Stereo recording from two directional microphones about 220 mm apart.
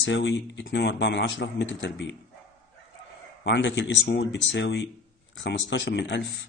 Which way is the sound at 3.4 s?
55° left (ahead or behind).